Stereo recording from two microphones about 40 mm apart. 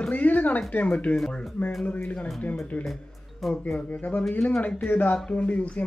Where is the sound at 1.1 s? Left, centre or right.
Centre.